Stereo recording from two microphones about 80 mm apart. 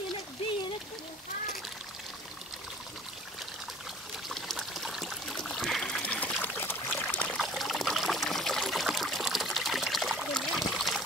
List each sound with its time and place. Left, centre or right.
4.3 s stream: centre
5.3 s a sound: centre
6.0 s trickle: centre
6.4 s pour: left
7.3 s trickle: centre